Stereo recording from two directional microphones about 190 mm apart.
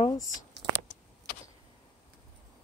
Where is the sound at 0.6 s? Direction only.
65° right (ahead or behind).